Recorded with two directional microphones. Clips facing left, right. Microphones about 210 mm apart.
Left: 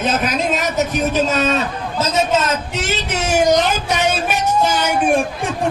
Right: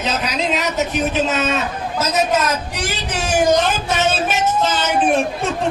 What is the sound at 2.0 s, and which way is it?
A child's voice, 25° left (ahead or behind).